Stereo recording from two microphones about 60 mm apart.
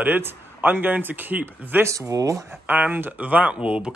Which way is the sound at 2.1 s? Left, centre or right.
Right.